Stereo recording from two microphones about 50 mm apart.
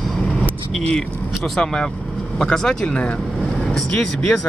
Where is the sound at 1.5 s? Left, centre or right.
Centre.